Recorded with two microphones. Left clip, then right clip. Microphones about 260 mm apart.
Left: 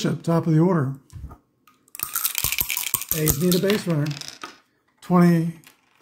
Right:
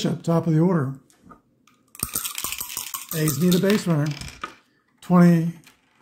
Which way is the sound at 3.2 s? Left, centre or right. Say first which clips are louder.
Even; centre.